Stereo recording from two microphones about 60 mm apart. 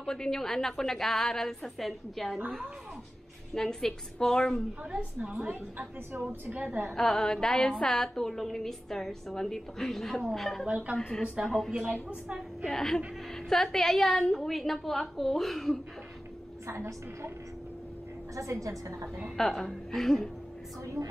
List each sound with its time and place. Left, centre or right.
0.0 s a woman's voice: centre
3.5 s a woman's voice: centre
5.2 s a woman's voice: centre
6.9 s a woman's voice: centre
10.7 s speech: right
11.0 s a woman's voice: centre
11.7 s a woman's voice: centre
12.6 s a woman's voice: centre
16.6 s a woman's voice: right
18.3 s a woman's voice: right
19.3 s a woman's voice: centre
20.8 s a woman's voice: right